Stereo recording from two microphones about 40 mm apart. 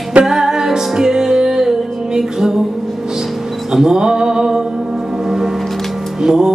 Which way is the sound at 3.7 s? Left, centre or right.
Centre.